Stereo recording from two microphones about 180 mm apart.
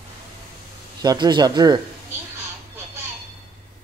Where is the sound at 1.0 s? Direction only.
25° right (ahead or behind).